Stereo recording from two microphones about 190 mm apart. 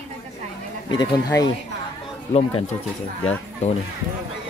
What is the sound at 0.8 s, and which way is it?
Speech, 20° left (ahead or behind).